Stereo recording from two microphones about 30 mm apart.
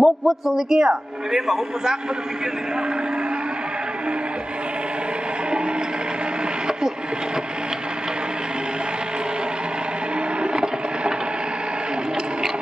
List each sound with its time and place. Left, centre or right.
0.0 s a man's voice: centre
10.4 s boat: right